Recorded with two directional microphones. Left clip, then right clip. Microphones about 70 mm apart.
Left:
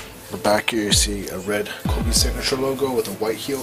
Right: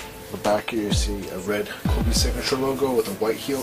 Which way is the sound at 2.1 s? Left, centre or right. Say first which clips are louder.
Left 3 dB; centre.